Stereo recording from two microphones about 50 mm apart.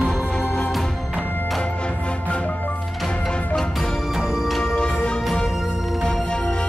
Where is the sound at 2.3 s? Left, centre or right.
Left.